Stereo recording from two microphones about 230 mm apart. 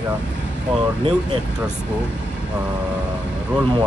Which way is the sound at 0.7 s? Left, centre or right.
Centre.